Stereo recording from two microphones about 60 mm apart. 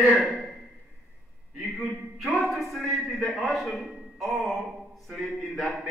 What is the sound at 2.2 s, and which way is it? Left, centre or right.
A man's voice, centre.